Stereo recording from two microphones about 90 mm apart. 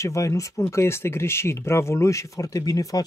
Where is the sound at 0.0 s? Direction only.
35° left (ahead or behind).